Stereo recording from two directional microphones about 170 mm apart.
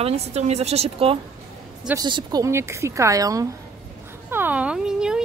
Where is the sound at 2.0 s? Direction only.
25° right (ahead or behind).